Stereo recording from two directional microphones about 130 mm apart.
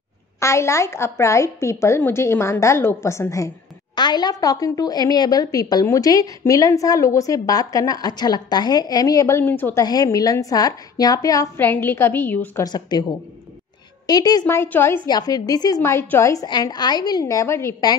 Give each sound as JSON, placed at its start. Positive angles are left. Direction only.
{"t": 0.4, "sound": "a woman's voice", "side_deg": 20}
{"t": 3.9, "sound": "a woman's voice", "side_deg": 35}
{"t": 9.8, "sound": "a woman's voice", "side_deg": 30}
{"t": 11.5, "sound": "a woman's voice", "side_deg": 15}
{"t": 12.6, "sound": "speech", "side_deg": 30}
{"t": 14.0, "sound": "speech", "side_deg": 30}
{"t": 14.5, "sound": "a woman's voice", "side_deg": 20}
{"t": 15.0, "sound": "a woman's voice", "side_deg": 30}